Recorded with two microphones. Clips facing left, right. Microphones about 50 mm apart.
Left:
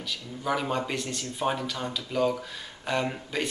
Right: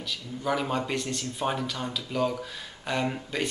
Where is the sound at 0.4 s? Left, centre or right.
Centre.